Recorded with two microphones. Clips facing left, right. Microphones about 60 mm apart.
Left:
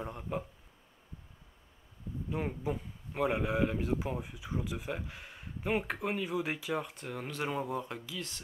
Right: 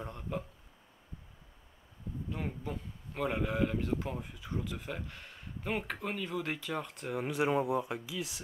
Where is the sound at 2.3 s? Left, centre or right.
Centre.